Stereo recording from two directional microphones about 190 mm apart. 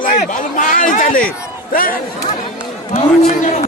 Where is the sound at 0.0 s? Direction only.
40° left (ahead or behind).